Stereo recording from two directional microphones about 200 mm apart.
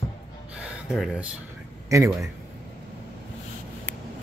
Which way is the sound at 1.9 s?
15° right (ahead or behind).